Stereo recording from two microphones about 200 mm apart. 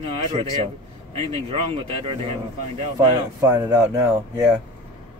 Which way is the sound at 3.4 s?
15° right (ahead or behind).